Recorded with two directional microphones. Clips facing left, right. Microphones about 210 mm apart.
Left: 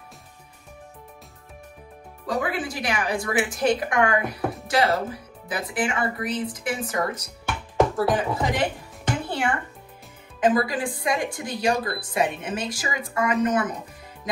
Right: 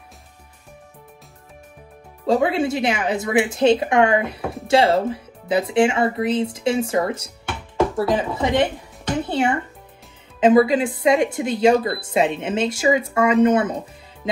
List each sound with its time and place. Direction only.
2.2 s speech: 25° right (ahead or behind)
9.2 s music: 25° right (ahead or behind)
10.4 s speech: 25° right (ahead or behind)